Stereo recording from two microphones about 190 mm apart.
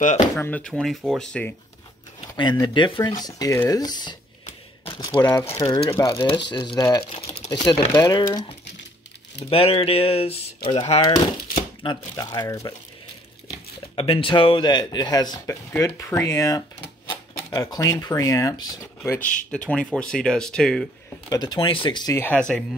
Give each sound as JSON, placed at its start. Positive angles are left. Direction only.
{"t": 0.4, "sound": "speech", "side_deg": 5}
{"t": 2.3, "sound": "speech", "side_deg": 25}
{"t": 13.9, "sound": "speech", "side_deg": 30}
{"t": 19.5, "sound": "speech", "side_deg": 5}
{"t": 21.3, "sound": "speech", "side_deg": 20}